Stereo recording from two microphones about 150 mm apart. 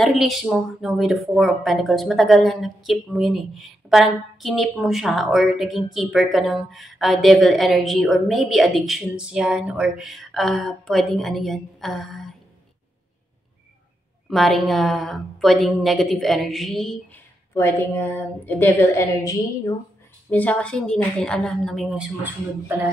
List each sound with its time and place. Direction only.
0.0 s speech: centre (ahead or behind)
14.3 s speech: centre (ahead or behind)
17.1 s a woman's voice: 15° left (ahead or behind)
20.2 s speech: 10° left (ahead or behind); by 22.3 s 5° right (ahead or behind)